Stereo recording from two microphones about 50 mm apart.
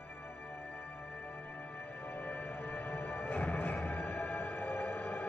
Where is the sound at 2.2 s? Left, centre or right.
Left.